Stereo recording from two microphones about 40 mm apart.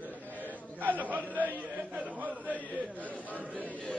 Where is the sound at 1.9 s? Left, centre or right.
Right.